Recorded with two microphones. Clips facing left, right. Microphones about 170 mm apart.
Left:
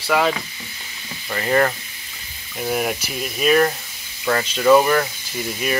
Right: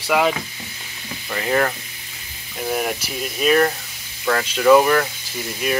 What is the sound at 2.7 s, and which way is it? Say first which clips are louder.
Speech: left 1 dB; centre (ahead or behind).